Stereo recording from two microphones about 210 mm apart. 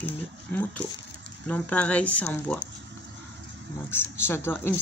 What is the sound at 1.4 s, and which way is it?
Speech, 5° left (ahead or behind).